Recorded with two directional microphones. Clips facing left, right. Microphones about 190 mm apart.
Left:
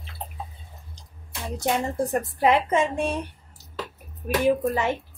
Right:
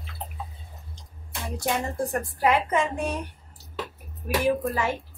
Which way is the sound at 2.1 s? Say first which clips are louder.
Left 2 dB; 20° left (ahead or behind).